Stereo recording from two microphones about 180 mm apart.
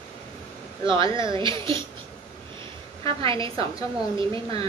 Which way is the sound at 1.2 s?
25° right (ahead or behind).